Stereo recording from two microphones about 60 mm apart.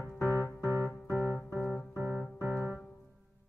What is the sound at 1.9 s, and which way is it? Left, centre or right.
Music, right.